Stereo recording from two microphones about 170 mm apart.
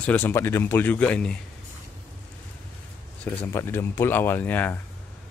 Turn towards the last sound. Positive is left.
turn(degrees=10)  # may be behind; listen again after turning